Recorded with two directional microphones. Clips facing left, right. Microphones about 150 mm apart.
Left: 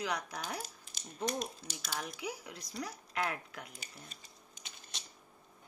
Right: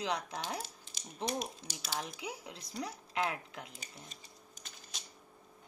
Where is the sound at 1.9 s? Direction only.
25° right (ahead or behind).